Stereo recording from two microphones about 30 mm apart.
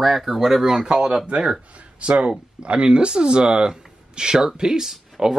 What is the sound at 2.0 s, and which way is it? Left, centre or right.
Speech, right.